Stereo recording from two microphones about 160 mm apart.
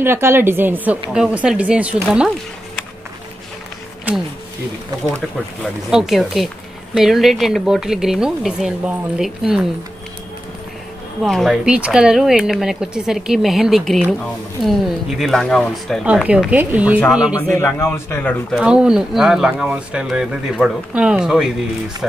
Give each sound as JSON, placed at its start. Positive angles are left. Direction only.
{"t": 0.0, "sound": "a woman's voice", "side_deg": -15}
{"t": 5.9, "sound": "speech", "side_deg": -5}
{"t": 11.2, "sound": "speech", "side_deg": 0}
{"t": 17.4, "sound": "speech", "side_deg": 15}
{"t": 18.6, "sound": "speech", "side_deg": -5}